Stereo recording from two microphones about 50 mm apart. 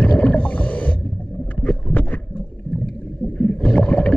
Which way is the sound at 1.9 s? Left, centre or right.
Left.